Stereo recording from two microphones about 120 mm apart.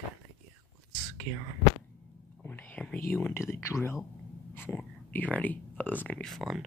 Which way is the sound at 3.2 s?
25° left (ahead or behind).